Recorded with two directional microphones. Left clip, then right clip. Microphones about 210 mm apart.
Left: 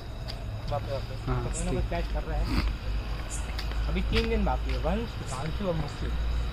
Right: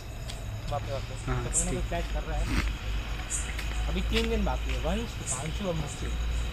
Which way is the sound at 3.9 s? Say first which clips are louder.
Left 1 dB; 10° left (ahead or behind).